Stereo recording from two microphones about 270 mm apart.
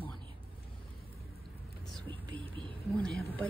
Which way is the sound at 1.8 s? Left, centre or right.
Centre.